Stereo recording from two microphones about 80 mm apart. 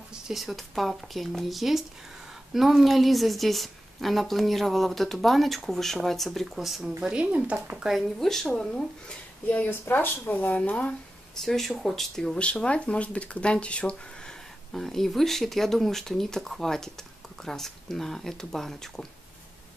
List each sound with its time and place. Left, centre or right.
0.1 s speech: centre
9.5 s a woman's voice: left
11.3 s speech: centre